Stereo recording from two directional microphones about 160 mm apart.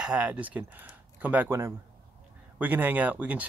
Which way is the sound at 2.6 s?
10° right (ahead or behind).